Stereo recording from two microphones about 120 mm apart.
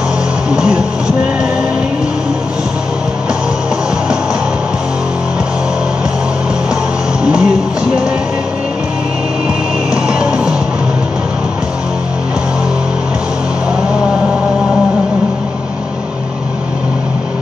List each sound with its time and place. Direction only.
0.5 s music: 5° right (ahead or behind)
7.2 s music: 5° right (ahead or behind)
10.0 s music: 5° right (ahead or behind)